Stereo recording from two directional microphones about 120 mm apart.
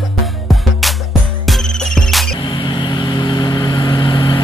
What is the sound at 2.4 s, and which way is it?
Vehicle, 45° left (ahead or behind).